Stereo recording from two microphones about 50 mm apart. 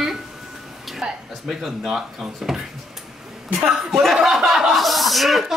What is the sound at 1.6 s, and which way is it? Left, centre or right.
Speech, centre.